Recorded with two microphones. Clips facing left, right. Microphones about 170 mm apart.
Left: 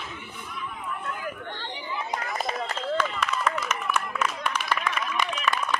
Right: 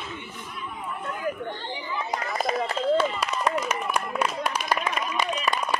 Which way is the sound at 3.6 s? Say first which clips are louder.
Right 1 dB; 30° right (ahead or behind).